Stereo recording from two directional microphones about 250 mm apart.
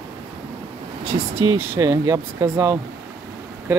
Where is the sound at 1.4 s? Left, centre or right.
Centre.